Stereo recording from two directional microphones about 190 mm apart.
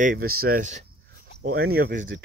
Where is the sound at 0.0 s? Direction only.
50° right (ahead or behind).